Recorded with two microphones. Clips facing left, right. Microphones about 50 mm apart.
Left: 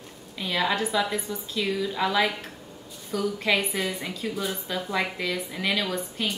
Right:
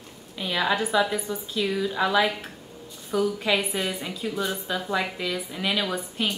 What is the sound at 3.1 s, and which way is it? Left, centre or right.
Speech, centre.